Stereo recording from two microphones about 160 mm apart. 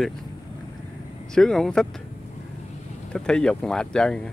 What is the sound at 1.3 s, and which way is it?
Speech, 5° left (ahead or behind).